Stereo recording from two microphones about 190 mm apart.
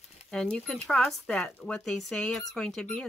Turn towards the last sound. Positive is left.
turn(degrees=5)  # may be behind; listen again after turning